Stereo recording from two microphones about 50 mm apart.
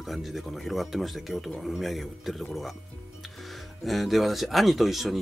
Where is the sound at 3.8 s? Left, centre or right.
Centre.